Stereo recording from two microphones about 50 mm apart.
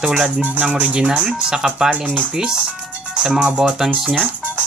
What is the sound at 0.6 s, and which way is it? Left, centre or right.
Speech, right.